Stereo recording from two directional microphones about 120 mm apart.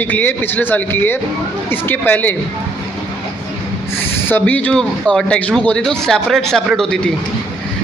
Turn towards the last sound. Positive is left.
turn(degrees=5)  # may be behind; listen again after turning